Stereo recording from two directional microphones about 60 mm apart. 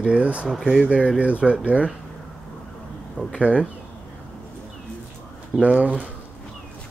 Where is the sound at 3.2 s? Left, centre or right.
Left.